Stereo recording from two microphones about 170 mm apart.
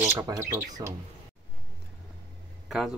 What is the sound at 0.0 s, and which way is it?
Speech, 15° right (ahead or behind).